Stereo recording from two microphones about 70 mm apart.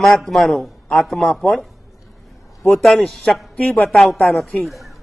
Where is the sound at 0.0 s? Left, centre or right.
Centre.